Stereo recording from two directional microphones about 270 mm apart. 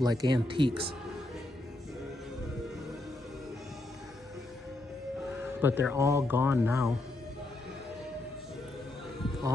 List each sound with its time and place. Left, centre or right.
0.0 s speech: centre
5.6 s speech: centre